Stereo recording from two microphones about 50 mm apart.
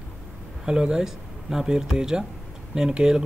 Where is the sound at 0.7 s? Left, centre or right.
Centre.